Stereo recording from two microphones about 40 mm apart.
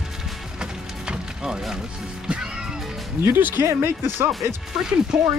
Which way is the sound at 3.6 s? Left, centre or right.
Right.